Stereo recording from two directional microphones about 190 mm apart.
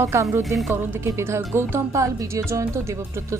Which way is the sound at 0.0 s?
15° right (ahead or behind).